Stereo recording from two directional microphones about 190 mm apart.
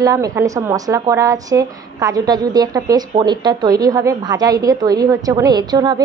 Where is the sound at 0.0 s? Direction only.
15° right (ahead or behind).